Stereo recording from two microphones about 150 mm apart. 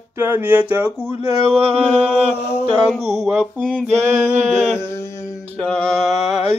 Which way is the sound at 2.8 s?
Centre (ahead or behind).